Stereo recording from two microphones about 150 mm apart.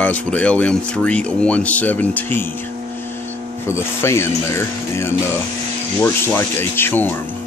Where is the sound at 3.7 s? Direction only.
15° left (ahead or behind).